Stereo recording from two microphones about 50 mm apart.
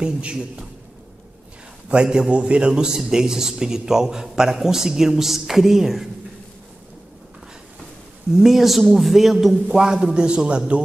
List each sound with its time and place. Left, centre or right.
0.0 s a man's voice: centre
1.9 s a man's voice: centre
8.3 s a man's voice: centre
9.7 s a man's voice: centre